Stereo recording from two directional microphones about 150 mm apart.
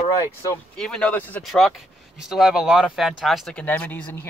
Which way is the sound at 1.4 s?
Centre (ahead or behind).